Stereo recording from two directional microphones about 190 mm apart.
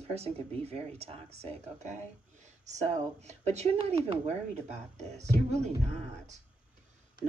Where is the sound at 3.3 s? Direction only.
35° right (ahead or behind).